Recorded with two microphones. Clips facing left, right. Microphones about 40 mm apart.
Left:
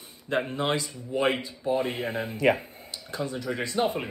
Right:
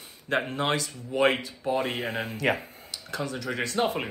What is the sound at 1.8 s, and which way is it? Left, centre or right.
Speech, right.